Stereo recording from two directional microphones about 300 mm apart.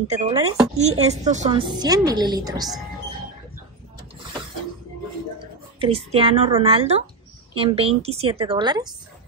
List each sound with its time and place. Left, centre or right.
0.1 s speech: right
5.8 s a woman's voice: centre